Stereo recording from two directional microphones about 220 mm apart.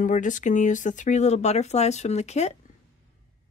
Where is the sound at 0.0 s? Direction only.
35° left (ahead or behind).